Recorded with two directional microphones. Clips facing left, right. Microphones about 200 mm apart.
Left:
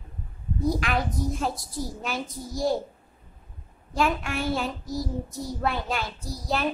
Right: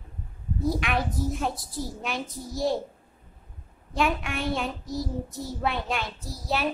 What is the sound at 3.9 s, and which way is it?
A child's voice, centre (ahead or behind).